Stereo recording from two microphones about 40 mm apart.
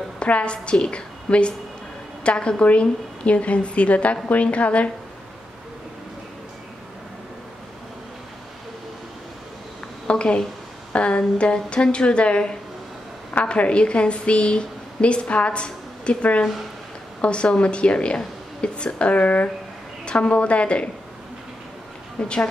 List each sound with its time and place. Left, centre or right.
0.2 s a woman's voice: left
10.0 s a woman's voice: left
22.2 s a woman's voice: left